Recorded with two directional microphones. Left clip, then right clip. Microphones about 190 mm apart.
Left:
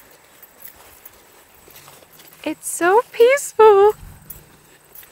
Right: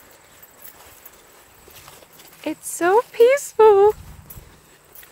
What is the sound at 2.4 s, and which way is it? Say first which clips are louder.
Speech: left 2 dB; centre (ahead or behind).